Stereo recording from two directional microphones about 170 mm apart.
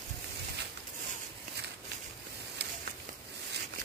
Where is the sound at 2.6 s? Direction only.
90° right.